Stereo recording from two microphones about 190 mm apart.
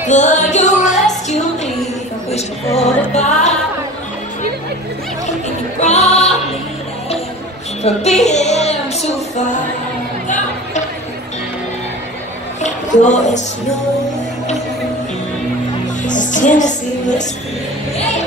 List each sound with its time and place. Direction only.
0.0 s music: 40° left (ahead or behind)
5.8 s music: 35° left (ahead or behind)
7.8 s a woman's voice: 35° left (ahead or behind)
10.2 s music: 40° left (ahead or behind)
12.6 s a sound: 40° left (ahead or behind)
16.1 s a woman's voice: 40° left (ahead or behind)